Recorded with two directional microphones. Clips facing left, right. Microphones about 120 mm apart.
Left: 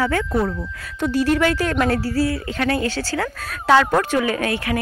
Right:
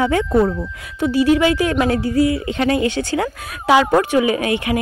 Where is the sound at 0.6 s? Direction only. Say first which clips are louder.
Right 3 dB; 10° right (ahead or behind).